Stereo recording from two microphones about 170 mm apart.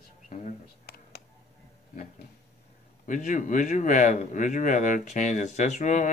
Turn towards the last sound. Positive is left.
turn(degrees=45)  # may be behind; listen again after turning